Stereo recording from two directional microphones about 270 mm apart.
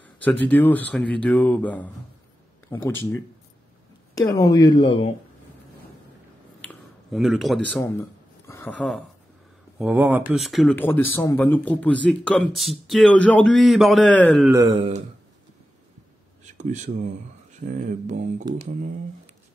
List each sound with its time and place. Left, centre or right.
0.0 s a man's voice: centre
6.6 s a sound: centre
8.5 s a man's voice: centre
14.5 s speech: centre
16.5 s speech: right